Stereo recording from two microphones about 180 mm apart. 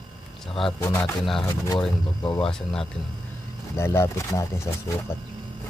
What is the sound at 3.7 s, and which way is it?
Speech, 15° left (ahead or behind).